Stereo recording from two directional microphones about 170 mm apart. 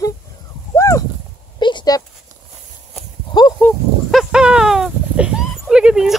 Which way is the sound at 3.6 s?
Centre (ahead or behind).